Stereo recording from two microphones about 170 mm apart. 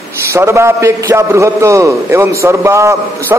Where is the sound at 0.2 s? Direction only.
15° right (ahead or behind).